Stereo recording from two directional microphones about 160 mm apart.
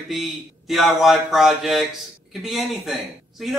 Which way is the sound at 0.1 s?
Centre (ahead or behind).